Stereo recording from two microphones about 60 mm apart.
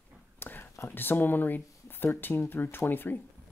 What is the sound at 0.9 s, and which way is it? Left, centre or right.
Speech, left.